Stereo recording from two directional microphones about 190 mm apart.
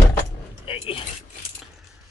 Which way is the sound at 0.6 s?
30° left (ahead or behind).